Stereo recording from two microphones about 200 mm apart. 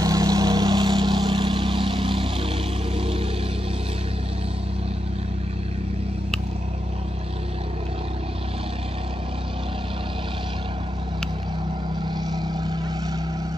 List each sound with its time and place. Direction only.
0.0 s vehicle: 20° right (ahead or behind)
12.3 s vehicle: 20° right (ahead or behind)